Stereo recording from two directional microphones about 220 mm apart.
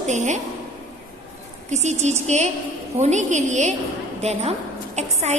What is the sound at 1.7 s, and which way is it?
A woman's voice, 30° right (ahead or behind).